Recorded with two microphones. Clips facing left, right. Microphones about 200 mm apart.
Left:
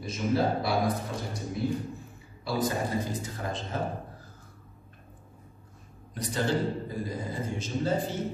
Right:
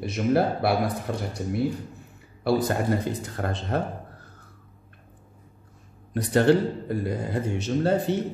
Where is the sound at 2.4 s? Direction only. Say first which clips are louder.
Right 6 dB; 65° right (ahead or behind).